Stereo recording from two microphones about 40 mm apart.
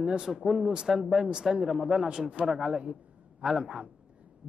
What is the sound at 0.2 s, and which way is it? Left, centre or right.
Speech, centre.